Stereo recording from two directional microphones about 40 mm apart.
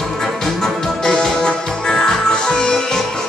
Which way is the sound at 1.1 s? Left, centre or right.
Centre.